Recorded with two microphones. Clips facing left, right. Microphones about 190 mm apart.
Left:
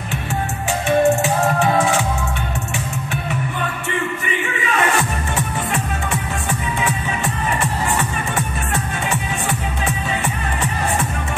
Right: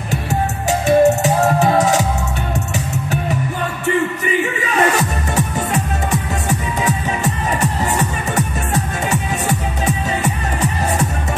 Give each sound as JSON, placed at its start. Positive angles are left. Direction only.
{"t": 0.1, "sound": "music", "side_deg": -40}
{"t": 4.7, "sound": "music", "side_deg": -40}
{"t": 6.8, "sound": "music", "side_deg": -40}